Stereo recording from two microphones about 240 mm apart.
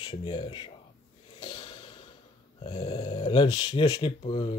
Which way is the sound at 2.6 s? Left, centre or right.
Left.